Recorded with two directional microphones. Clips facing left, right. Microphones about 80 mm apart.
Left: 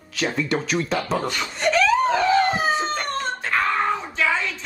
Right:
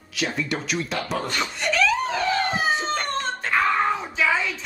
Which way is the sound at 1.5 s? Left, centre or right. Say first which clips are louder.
Left 5 dB; left.